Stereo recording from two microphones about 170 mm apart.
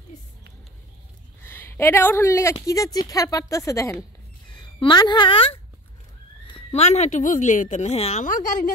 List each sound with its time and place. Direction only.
1.4 s a woman's voice: 10° left (ahead or behind); by 8.3 s 40° left (ahead or behind)
8.3 s a woman's voice: 50° left (ahead or behind)